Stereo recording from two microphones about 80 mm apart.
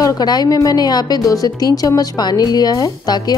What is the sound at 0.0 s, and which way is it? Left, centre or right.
Speech, left.